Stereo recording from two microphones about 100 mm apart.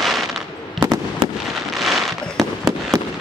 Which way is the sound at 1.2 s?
60° right (ahead or behind).